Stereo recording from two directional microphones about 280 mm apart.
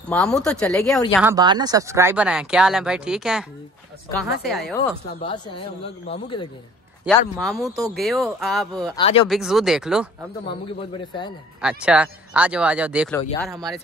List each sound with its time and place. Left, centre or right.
0.1 s speech: centre
1.1 s speech: centre
5.2 s speech: centre
7.1 s speech: centre
8.9 s speech: centre
9.3 s speech: centre
10.8 s speech: centre
11.6 s speech: centre